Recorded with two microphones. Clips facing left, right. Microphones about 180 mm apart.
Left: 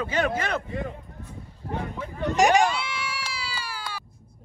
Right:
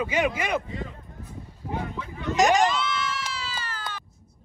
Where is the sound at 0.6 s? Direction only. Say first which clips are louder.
Left 4 dB; 55° left (ahead or behind).